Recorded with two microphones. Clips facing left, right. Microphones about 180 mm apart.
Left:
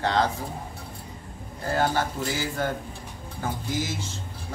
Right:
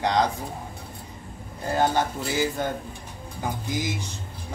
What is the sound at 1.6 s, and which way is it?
Speech, 20° right (ahead or behind).